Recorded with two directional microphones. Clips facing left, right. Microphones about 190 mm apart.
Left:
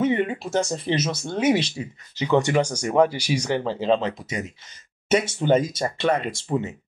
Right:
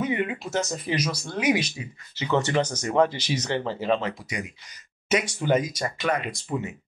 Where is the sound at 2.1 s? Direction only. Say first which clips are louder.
Left 4 dB; 15° left (ahead or behind).